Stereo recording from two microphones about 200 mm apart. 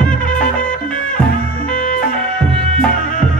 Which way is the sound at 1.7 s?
40° left (ahead or behind).